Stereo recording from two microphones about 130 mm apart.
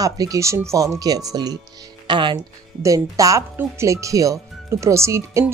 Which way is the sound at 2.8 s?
25° right (ahead or behind).